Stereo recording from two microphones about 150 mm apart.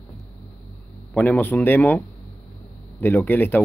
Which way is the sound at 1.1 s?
10° left (ahead or behind).